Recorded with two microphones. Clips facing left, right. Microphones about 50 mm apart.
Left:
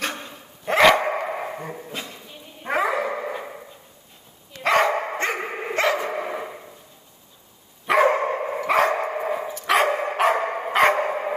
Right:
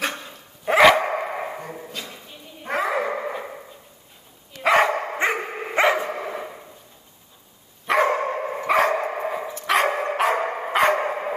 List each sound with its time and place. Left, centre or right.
0.7 s dog: centre
4.6 s dog: centre
5.4 s dog: centre
5.8 s dog: centre
6.0 s dog: centre
7.8 s dog: centre